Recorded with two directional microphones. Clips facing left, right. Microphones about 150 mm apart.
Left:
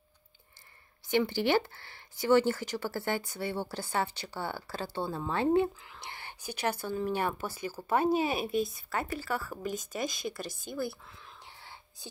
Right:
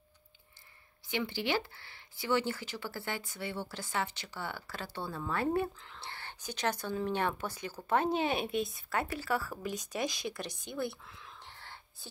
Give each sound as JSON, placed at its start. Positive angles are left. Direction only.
{"t": 1.1, "sound": "speech", "side_deg": 45}
{"t": 5.8, "sound": "speech", "side_deg": 10}
{"t": 11.4, "sound": "whispering", "side_deg": 10}